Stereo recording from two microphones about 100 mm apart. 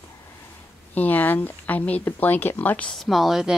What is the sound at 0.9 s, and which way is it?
Speech, 15° left (ahead or behind).